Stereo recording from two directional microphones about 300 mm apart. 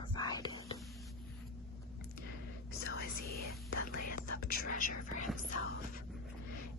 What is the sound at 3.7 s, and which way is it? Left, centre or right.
Whispering, left.